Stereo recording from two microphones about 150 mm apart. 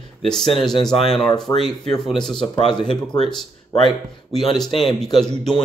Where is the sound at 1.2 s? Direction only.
25° left (ahead or behind).